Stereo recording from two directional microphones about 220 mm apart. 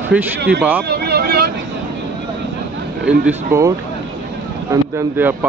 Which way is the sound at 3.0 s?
10° right (ahead or behind).